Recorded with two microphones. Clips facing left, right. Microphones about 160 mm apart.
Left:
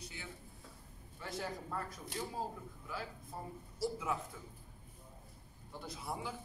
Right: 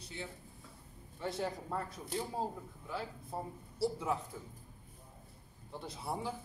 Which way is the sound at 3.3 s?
25° right (ahead or behind).